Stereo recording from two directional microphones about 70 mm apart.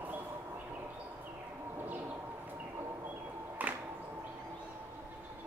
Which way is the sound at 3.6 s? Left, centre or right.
Right.